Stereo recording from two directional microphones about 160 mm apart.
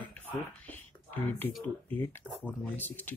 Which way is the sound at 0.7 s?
10° left (ahead or behind).